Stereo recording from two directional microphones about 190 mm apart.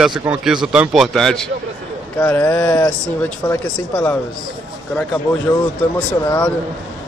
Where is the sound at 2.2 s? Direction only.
10° left (ahead or behind).